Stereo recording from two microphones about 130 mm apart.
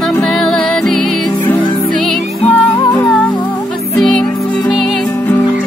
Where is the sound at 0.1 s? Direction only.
5° left (ahead or behind).